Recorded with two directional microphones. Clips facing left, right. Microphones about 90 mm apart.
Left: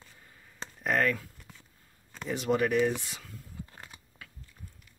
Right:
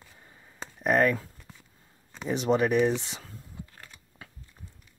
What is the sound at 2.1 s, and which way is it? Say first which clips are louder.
Speech: right 4 dB; 20° right (ahead or behind).